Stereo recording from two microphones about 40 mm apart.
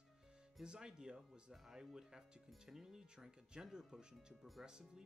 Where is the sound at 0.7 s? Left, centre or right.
Centre.